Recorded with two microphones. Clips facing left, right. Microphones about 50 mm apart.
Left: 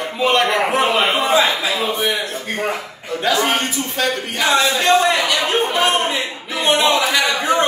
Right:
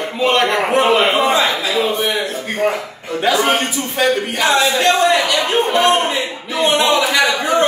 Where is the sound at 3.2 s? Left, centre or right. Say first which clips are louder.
Right 2 dB; right.